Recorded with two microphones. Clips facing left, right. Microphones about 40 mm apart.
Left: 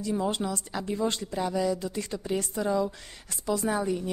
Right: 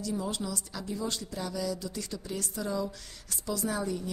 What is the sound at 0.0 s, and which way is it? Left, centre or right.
A woman's voice, left.